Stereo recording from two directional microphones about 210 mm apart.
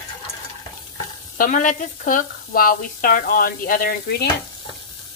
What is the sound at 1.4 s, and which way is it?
Speech, 40° left (ahead or behind).